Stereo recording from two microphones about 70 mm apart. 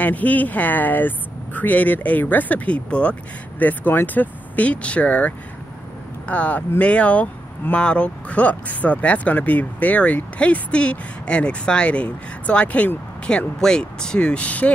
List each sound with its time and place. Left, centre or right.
0.0 s speech: left
13.6 s speech: centre